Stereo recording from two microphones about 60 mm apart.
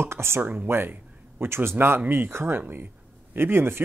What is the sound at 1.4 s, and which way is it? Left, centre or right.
Speech, right.